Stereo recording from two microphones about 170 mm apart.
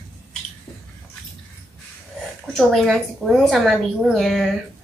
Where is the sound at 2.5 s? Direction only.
Centre (ahead or behind).